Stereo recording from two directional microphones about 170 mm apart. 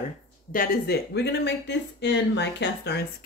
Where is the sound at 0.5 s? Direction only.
60° left (ahead or behind).